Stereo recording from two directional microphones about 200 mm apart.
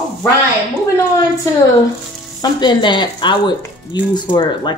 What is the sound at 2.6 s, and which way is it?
Speech, 25° left (ahead or behind).